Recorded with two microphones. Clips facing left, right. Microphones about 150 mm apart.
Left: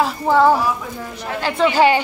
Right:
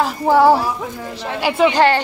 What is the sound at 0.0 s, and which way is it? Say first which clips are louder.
Speech: right 2 dB; 5° right (ahead or behind).